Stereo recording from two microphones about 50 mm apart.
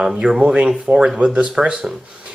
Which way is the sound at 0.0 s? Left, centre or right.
Centre.